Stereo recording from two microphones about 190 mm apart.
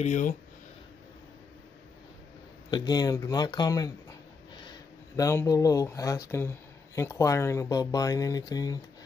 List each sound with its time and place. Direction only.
0.0 s speech: 40° left (ahead or behind)
2.7 s speech: 20° left (ahead or behind)